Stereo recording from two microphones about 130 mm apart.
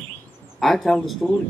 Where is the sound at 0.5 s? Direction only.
Centre (ahead or behind).